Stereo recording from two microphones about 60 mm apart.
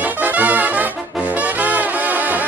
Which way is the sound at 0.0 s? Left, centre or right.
Right.